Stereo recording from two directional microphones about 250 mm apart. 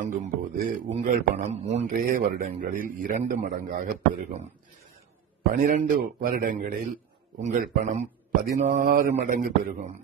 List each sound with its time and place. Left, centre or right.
0.0 s a man's voice: right
5.5 s a man's voice: right